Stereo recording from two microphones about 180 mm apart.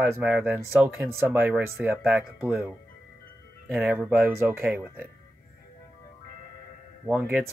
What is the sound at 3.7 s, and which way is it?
Speech, 10° right (ahead or behind).